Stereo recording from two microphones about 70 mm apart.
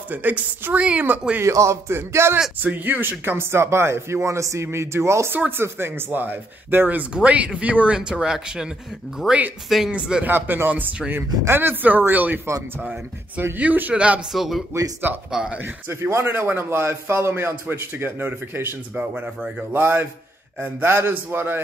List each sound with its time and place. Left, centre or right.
0.1 s speech: right
1.4 s speech: right
2.6 s speech: right
7.2 s speech: centre
9.8 s speech: centre
10.2 s speech: right
13.6 s speech: right
14.3 s speech: centre
15.6 s speech: right
19.7 s speech: right